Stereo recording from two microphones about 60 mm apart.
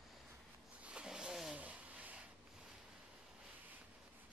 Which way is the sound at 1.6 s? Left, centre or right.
Right.